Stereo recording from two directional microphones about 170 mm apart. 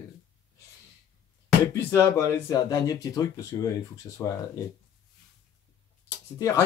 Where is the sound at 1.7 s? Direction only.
15° left (ahead or behind).